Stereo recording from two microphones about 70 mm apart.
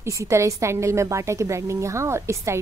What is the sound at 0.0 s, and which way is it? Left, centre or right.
A woman's voice, right.